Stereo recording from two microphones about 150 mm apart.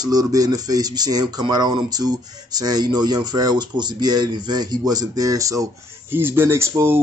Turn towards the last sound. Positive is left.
turn(degrees=-20)  # may be behind; listen again after turning